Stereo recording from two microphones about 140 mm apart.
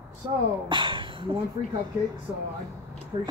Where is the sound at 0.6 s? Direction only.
35° right (ahead or behind).